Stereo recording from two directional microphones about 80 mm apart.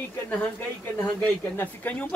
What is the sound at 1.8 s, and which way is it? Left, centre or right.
Speech, centre.